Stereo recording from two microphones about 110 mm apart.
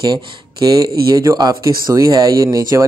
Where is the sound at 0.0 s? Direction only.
40° right (ahead or behind).